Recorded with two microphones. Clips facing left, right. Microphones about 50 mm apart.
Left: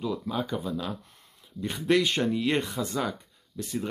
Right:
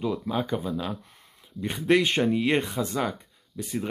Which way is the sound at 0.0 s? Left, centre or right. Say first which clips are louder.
Right 3 dB; right.